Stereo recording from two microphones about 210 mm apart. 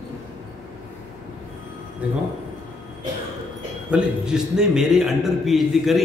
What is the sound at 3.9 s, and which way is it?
A man's voice, 5° right (ahead or behind).